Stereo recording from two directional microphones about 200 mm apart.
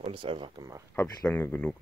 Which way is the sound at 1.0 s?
10° left (ahead or behind).